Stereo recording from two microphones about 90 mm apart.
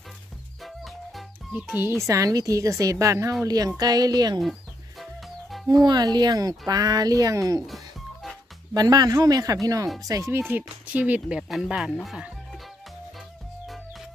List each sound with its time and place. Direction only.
1.5 s speech: 15° right (ahead or behind)
1.9 s a woman's voice: 35° right (ahead or behind)
5.7 s a woman's voice: 45° right (ahead or behind)
7.6 s music: centre (ahead or behind)
8.7 s a woman's voice: 45° right (ahead or behind)
10.5 s speech: 15° right (ahead or behind)
11.4 s speech: centre (ahead or behind)